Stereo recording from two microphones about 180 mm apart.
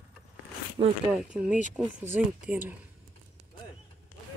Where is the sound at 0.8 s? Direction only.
40° right (ahead or behind).